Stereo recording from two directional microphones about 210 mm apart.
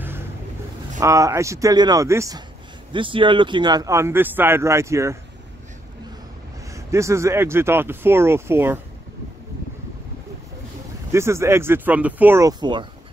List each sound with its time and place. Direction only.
0.9 s speech: 15° right (ahead or behind)
6.7 s speech: 15° right (ahead or behind)
11.1 s speech: 15° right (ahead or behind)